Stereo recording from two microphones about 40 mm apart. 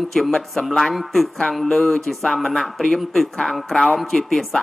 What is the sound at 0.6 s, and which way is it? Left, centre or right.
Speech, left.